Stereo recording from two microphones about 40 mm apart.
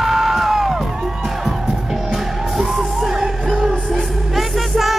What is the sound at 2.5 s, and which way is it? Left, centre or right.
Music, centre.